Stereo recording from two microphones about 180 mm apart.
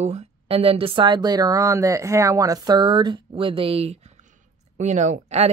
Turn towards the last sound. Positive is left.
turn(degrees=-40)  # may be behind; listen again after turning